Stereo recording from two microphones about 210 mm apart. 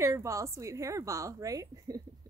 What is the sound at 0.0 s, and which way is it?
A woman's voice, 15° right (ahead or behind).